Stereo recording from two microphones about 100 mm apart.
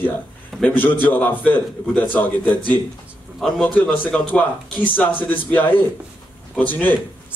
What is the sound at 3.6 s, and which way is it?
Speech, 15° left (ahead or behind).